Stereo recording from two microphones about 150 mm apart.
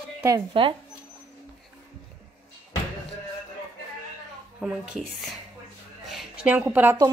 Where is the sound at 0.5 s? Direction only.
35° right (ahead or behind).